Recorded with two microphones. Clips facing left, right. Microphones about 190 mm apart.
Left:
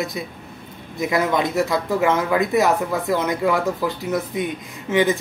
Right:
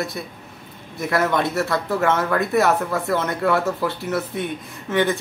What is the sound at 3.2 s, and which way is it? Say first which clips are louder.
Speech: even; 15° left (ahead or behind).